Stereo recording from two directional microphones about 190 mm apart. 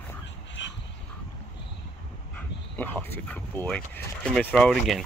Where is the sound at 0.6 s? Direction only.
70° left (ahead or behind).